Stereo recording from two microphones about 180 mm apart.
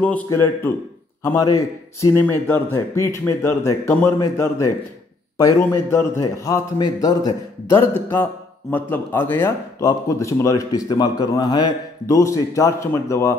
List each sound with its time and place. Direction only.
0.0 s speech: 10° left (ahead or behind)